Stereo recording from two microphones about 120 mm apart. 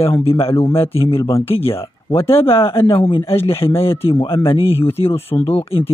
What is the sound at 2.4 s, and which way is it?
Speech, 50° left (ahead or behind).